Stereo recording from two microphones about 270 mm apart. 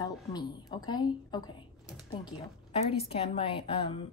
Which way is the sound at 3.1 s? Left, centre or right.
Left.